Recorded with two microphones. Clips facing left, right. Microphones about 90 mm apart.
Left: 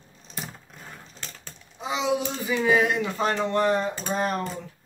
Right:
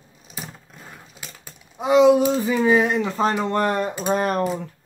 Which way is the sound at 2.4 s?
35° right (ahead or behind).